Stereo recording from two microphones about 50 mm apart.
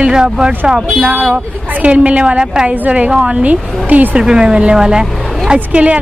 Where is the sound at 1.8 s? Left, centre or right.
Right.